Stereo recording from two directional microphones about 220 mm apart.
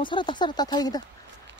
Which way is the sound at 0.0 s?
20° left (ahead or behind).